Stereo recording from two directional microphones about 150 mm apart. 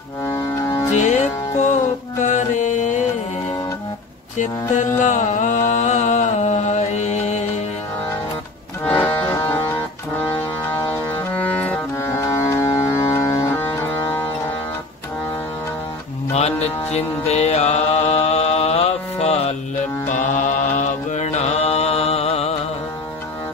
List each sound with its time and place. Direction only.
0.6 s music: 20° left (ahead or behind)
0.9 s music: 50° left (ahead or behind)
5.0 s music: 55° left (ahead or behind)
9.0 s music: 15° left (ahead or behind)
16.3 s music: 45° left (ahead or behind)
20.1 s mantra: 55° left (ahead or behind)